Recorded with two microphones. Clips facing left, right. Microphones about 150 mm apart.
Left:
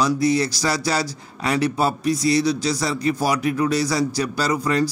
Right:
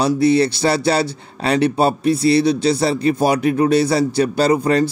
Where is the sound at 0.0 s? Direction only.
25° right (ahead or behind).